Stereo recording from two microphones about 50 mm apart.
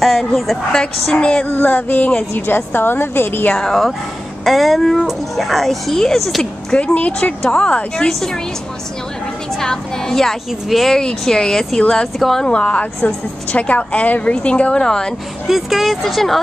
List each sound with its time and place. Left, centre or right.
0.0 s a woman's voice: centre
1.1 s a woman's voice: centre
1.4 s a sound: left
2.3 s a woman's voice: left
3.5 s speech: centre
6.7 s a woman's voice: left
8.1 s speech: centre
9.5 s speech: centre
11.0 s speech: centre
12.4 s a woman's voice: centre
13.0 s a woman's voice: left; by 15.1 s centre
15.4 s speech: centre